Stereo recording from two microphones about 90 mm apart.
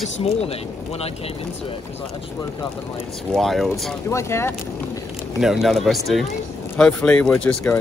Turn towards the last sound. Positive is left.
turn(degrees=10)  # may be behind; listen again after turning